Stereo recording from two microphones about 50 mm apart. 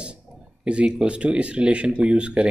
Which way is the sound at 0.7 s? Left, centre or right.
Centre.